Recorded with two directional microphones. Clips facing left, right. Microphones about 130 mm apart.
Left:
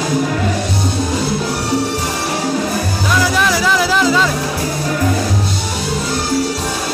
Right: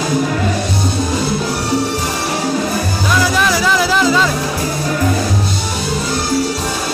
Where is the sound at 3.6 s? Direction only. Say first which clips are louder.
Even; 30° right (ahead or behind).